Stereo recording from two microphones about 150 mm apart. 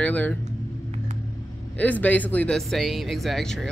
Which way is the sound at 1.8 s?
10° left (ahead or behind).